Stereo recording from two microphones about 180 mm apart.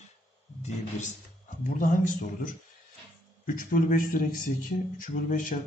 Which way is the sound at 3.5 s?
50° left (ahead or behind).